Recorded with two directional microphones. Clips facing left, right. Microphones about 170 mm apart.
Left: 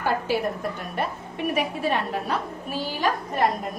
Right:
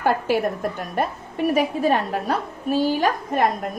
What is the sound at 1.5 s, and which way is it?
A woman's voice, 40° right (ahead or behind).